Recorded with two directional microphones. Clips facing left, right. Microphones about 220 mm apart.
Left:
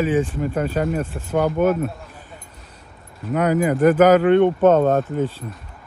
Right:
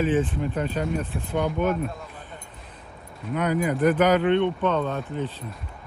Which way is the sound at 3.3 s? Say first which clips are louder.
Left 5 dB; 45° left (ahead or behind).